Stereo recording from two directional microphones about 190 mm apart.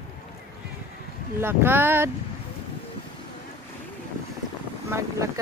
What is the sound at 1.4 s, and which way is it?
Speech, 10° right (ahead or behind).